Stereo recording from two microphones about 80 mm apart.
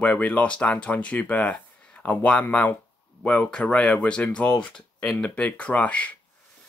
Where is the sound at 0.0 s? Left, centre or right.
Centre.